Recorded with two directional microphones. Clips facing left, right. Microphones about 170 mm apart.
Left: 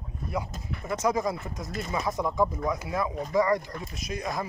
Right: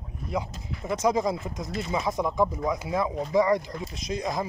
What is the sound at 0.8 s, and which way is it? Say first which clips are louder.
Speech: right 2 dB; 15° right (ahead or behind).